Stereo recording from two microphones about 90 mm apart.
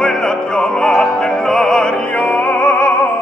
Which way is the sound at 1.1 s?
5° left (ahead or behind).